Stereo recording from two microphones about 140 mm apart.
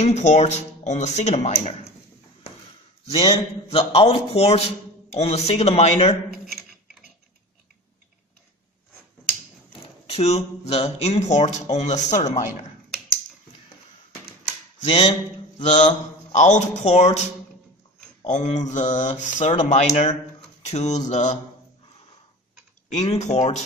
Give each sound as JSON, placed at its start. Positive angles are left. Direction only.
{"t": 0.0, "sound": "speech", "side_deg": 55}
{"t": 3.1, "sound": "a man's voice", "side_deg": 30}
{"t": 3.7, "sound": "speech", "side_deg": 45}
{"t": 9.7, "sound": "a sound", "side_deg": 45}
{"t": 10.7, "sound": "speech", "side_deg": 50}
{"t": 15.6, "sound": "speech", "side_deg": 60}
{"t": 22.9, "sound": "speech", "side_deg": 55}